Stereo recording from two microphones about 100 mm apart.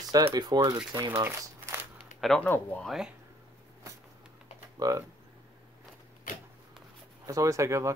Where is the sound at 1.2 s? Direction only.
25° right (ahead or behind).